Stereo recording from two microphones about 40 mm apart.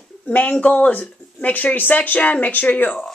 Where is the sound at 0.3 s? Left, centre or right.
Left.